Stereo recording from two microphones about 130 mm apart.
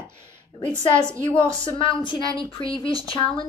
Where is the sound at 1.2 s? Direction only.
40° left (ahead or behind).